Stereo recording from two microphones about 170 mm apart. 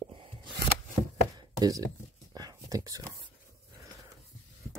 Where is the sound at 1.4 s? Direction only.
20° right (ahead or behind).